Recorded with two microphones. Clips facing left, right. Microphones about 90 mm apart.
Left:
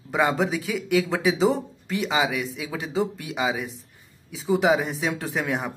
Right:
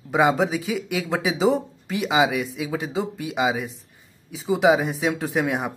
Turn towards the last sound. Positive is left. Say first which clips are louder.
# right 3 dB
turn(degrees=-5)  # may be behind; listen again after turning